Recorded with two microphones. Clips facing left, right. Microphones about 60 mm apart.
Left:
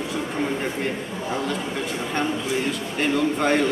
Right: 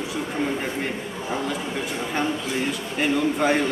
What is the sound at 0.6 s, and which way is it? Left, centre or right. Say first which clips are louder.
A man's voice: left 1 dB; centre.